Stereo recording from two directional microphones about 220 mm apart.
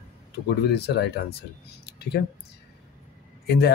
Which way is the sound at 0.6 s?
50° left (ahead or behind).